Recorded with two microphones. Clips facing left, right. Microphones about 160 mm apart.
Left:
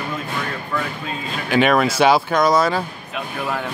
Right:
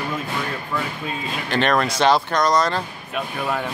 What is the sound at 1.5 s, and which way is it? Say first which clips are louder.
Speech: left 4 dB; 5° left (ahead or behind).